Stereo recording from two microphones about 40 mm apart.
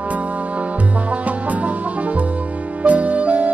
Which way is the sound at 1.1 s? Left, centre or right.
Right.